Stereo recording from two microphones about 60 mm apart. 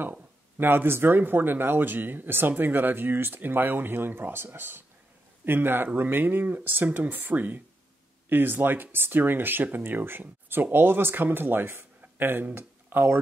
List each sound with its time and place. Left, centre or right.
0.6 s speech: right